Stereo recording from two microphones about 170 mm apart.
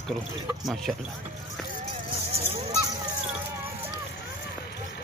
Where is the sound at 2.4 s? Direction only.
35° right (ahead or behind).